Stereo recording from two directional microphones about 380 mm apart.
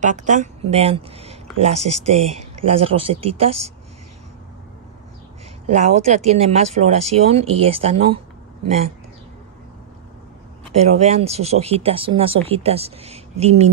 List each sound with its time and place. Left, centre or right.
0.0 s speech: centre
5.7 s speech: centre
10.7 s speech: right
11.0 s speech: centre